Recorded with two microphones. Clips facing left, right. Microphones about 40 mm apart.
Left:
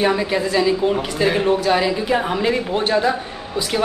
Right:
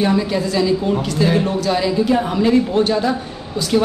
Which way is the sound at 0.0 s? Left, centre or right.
Centre.